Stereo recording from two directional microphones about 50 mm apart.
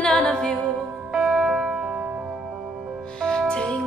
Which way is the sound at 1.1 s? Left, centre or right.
Centre.